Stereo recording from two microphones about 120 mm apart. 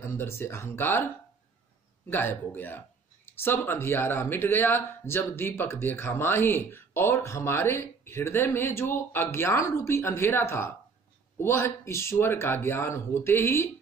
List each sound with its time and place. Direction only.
0.0 s a man's voice: 20° left (ahead or behind)